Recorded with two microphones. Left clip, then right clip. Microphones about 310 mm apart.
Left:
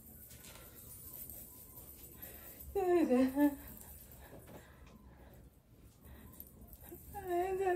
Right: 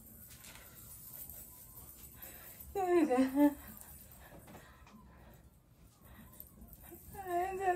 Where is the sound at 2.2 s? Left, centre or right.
Right.